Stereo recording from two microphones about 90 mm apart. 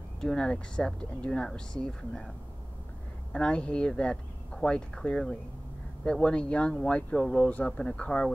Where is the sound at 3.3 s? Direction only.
10° left (ahead or behind).